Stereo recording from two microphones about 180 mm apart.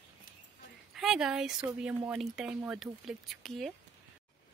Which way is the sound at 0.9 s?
Centre (ahead or behind).